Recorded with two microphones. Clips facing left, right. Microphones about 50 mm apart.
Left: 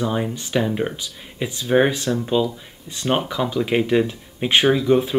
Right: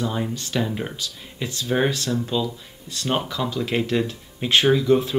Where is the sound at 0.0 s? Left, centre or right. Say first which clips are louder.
Left 3 dB; left.